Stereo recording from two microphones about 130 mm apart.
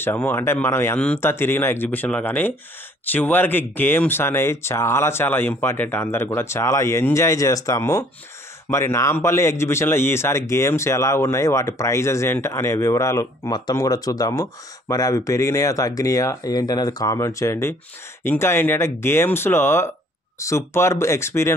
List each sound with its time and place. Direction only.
0.0 s speech: 15° left (ahead or behind)